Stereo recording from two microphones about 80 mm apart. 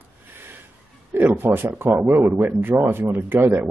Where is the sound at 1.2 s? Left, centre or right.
Right.